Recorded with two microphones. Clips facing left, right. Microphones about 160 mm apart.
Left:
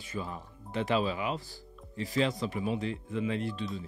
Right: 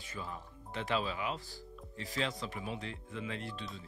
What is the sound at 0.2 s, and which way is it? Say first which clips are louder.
Speech: left 6 dB; 30° left (ahead or behind).